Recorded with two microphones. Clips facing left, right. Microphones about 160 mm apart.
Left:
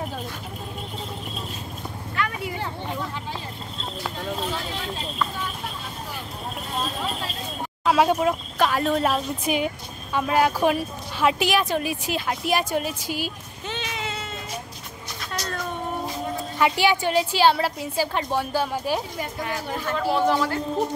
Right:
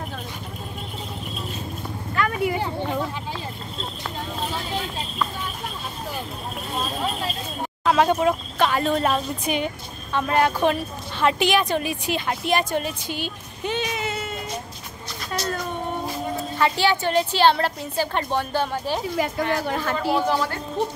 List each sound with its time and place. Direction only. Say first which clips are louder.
2.1 s a sound: right 6 dB; 45° right (ahead or behind)
7.8 s a woman's voice: right 1 dB; 5° left (ahead or behind)
13.7 s music: right 5 dB; 10° right (ahead or behind)
16.5 s a woman's voice: left 1 dB; 15° left (ahead or behind)
19.1 s a woman's voice: right 6 dB; 90° right
20.0 s a woman's voice: left 2 dB; centre (ahead or behind)